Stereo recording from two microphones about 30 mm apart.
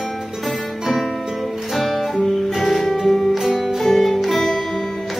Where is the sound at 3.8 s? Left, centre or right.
Centre.